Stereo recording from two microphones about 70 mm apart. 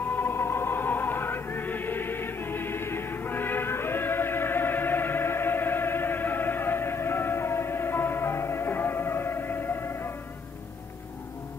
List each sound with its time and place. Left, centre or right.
0.0 s music: left